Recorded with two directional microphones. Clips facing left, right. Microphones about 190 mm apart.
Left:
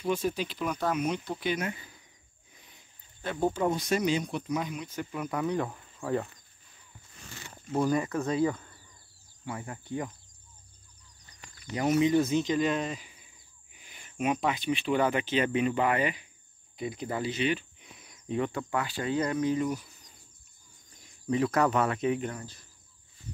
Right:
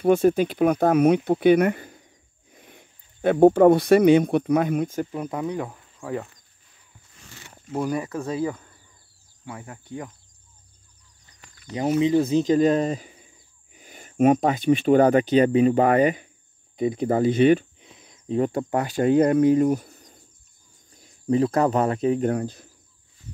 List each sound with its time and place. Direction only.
0.0 s speech: 55° right (ahead or behind)
5.1 s speech: 30° right (ahead or behind)
5.4 s speech: 10° right (ahead or behind)
7.5 s speech: 10° right (ahead or behind)
11.7 s speech: 25° right (ahead or behind); by 17.6 s 50° right (ahead or behind)
17.7 s a sound: 25° right (ahead or behind)
18.4 s speech: 40° right (ahead or behind)
20.9 s speech: 35° right (ahead or behind)
22.3 s speech: 60° right (ahead or behind)